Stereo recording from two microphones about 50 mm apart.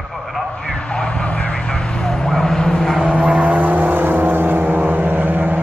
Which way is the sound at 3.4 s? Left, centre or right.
Right.